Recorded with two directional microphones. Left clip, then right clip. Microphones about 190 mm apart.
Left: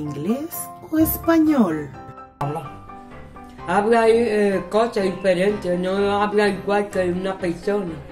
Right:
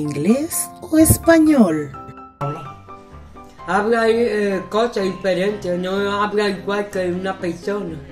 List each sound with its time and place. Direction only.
0.0 s speech: 25° right (ahead or behind)
3.6 s speech: centre (ahead or behind)